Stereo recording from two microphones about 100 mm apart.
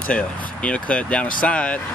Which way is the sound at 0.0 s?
15° left (ahead or behind).